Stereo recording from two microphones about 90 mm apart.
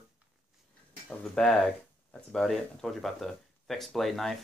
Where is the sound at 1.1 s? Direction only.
5° left (ahead or behind).